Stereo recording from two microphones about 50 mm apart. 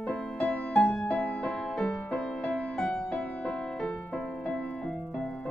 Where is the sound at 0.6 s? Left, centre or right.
Left.